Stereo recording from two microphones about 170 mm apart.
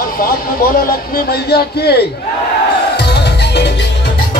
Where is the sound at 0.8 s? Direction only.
60° left (ahead or behind); by 4.1 s 90° left.